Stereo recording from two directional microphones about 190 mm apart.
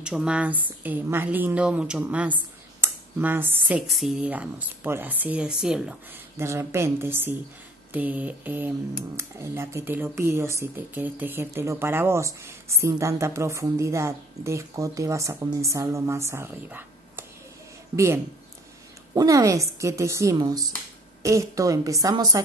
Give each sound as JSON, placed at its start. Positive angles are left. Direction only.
{"t": 0.0, "sound": "speech", "side_deg": -5}